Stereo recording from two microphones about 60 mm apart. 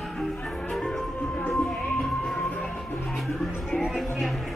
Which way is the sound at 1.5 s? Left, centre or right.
Centre.